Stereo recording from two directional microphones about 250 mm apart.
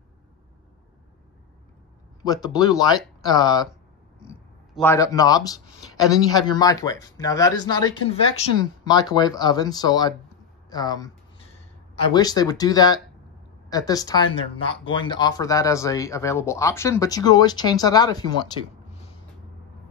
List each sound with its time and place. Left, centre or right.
2.2 s speech: centre